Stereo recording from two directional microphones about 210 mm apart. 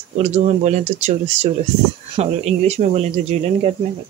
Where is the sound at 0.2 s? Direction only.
35° right (ahead or behind).